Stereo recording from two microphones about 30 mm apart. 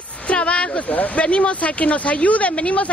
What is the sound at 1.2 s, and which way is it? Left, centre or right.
Speech, left.